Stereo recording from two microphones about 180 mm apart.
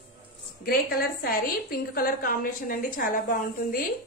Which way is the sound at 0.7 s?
55° left (ahead or behind).